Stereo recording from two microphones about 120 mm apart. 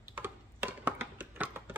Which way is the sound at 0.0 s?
15° right (ahead or behind).